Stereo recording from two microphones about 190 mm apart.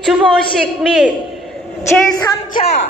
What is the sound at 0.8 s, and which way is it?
Speech, centre (ahead or behind).